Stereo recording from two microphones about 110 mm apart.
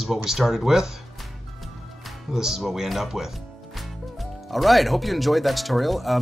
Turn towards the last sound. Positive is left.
turn(degrees=0)  # may be behind; listen again after turning